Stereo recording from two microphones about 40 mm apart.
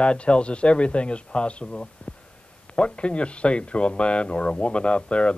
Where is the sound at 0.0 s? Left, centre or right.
Left.